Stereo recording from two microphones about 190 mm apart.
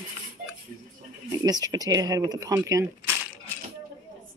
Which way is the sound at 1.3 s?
20° right (ahead or behind).